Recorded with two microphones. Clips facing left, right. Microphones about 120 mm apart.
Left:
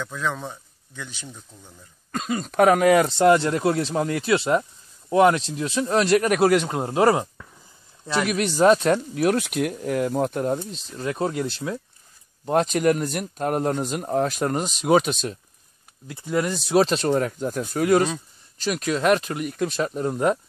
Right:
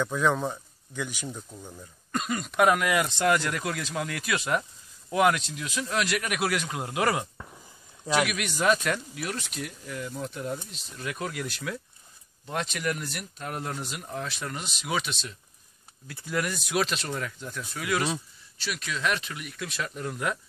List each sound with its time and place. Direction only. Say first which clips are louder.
0.0 s speech: right 3 dB; 10° right (ahead or behind)
2.2 s speech: left 5 dB; 35° left (ahead or behind)
9.2 s speech: left 13 dB; 55° left (ahead or behind)
10.7 s speech: left 8 dB; 35° left (ahead or behind)
12.4 s speech: left 11 dB; 40° left (ahead or behind)
16.1 s speech: left 6 dB; 20° left (ahead or behind); by 20.3 s 35° left (ahead or behind)